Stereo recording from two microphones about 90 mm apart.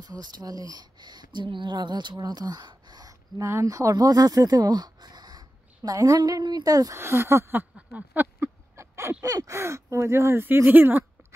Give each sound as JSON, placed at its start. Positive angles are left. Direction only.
{"t": 0.0, "sound": "speech", "side_deg": -50}
{"t": 7.0, "sound": "speech", "side_deg": -30}
{"t": 7.7, "sound": "a sound", "side_deg": -20}
{"t": 8.7, "sound": "gasp", "side_deg": -35}
{"t": 9.2, "sound": "speech", "side_deg": -40}